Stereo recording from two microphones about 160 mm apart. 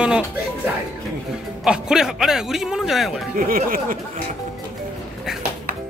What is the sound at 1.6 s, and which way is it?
Speech, 5° right (ahead or behind).